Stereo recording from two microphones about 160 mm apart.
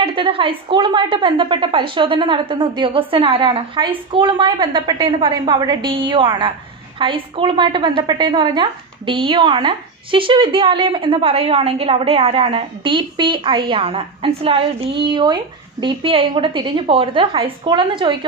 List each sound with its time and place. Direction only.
0.0 s a woman's voice: 35° right (ahead or behind)